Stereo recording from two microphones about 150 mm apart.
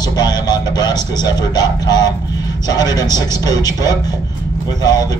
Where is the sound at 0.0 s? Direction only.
25° left (ahead or behind).